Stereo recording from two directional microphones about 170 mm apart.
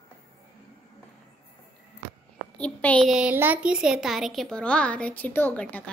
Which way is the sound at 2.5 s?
10° left (ahead or behind).